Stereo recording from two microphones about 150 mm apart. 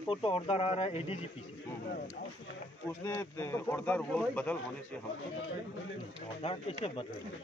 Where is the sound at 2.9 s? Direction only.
20° left (ahead or behind).